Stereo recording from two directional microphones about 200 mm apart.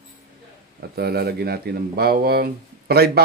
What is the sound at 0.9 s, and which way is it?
Speech, 50° right (ahead or behind).